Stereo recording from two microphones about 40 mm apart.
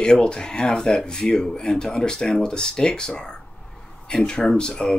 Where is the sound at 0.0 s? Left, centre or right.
Left.